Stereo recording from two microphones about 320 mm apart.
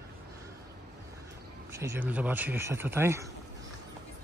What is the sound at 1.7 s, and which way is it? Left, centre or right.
Speech, centre.